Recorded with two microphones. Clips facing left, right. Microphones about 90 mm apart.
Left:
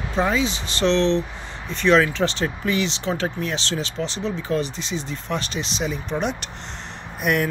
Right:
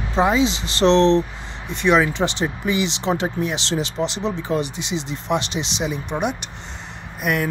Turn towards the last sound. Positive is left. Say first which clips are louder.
# left 1 dB
turn(degrees=0)  # may be behind; listen again after turning